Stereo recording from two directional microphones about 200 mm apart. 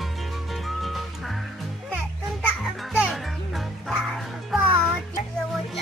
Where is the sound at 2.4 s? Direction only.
Centre (ahead or behind).